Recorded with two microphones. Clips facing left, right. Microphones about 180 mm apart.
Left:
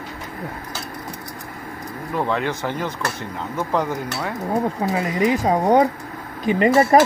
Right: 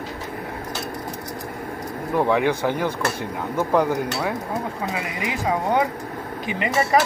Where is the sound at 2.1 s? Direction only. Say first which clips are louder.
Right 3 dB; 15° right (ahead or behind).